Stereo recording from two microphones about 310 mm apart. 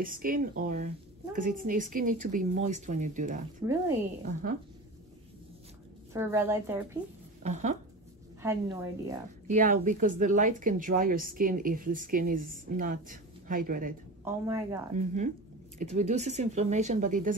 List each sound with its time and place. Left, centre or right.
0.0 s speech: right
3.6 s speech: centre
6.1 s speech: centre
7.4 s speech: right
8.4 s speech: centre
9.5 s speech: right
14.2 s speech: centre
15.0 s speech: right